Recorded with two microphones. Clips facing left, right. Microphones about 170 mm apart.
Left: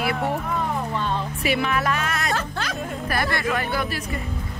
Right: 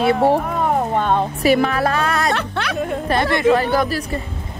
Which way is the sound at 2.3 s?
70° right (ahead or behind).